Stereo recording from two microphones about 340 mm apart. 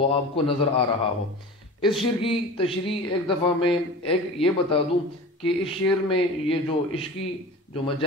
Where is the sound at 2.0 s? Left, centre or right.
Centre.